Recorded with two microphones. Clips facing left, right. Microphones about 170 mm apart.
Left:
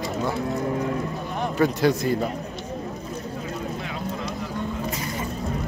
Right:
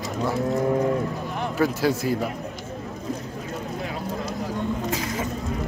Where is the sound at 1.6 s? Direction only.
5° right (ahead or behind).